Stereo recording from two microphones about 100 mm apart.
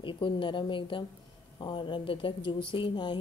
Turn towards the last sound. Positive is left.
turn(degrees=50)  # may be behind; listen again after turning